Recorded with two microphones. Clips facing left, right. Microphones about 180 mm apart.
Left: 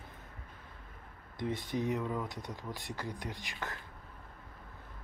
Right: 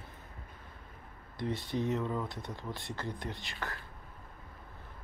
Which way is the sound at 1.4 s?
15° left (ahead or behind).